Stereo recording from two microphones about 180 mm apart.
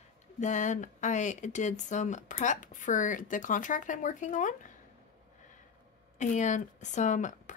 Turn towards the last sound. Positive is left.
turn(degrees=45)  # may be behind; listen again after turning